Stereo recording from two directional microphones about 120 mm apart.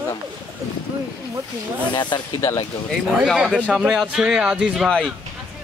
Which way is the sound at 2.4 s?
20° left (ahead or behind).